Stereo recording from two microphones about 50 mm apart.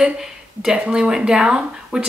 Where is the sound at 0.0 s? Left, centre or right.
Centre.